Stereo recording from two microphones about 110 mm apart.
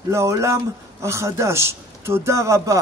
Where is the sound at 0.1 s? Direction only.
25° right (ahead or behind).